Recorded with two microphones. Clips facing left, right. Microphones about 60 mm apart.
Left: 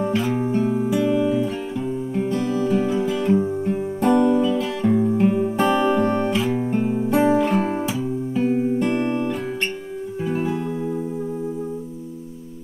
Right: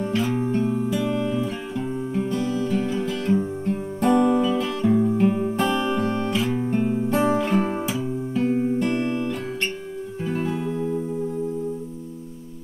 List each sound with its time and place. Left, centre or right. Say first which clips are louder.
0.0 s music: left 2 dB; centre
6.3 s music: left 2 dB; centre
8.9 s guitar: left 2 dB; centre
10.2 s music: left 2 dB; centre